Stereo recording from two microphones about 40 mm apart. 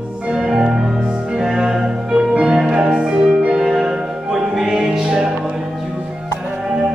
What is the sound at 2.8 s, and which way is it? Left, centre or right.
Music, right.